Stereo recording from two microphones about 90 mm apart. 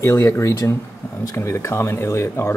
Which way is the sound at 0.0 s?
35° left (ahead or behind).